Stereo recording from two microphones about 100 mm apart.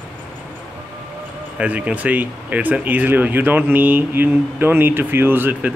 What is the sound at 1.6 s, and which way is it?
Speech, 15° right (ahead or behind).